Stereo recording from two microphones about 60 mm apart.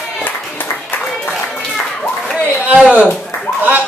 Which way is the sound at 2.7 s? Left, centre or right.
Right.